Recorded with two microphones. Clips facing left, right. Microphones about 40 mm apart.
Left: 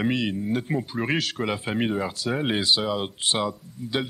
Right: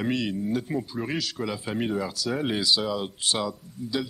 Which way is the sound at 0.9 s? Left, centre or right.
Left.